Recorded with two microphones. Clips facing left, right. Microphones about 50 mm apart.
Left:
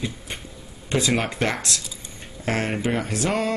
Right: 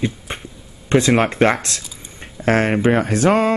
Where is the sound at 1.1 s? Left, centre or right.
Right.